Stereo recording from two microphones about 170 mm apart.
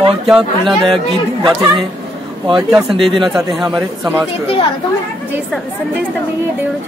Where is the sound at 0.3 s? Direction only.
Centre (ahead or behind).